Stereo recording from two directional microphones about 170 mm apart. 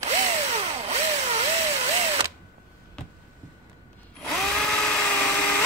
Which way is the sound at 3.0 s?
5° left (ahead or behind).